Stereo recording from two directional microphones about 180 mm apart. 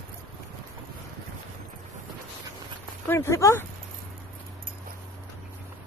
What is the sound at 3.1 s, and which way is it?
Speech, 15° left (ahead or behind).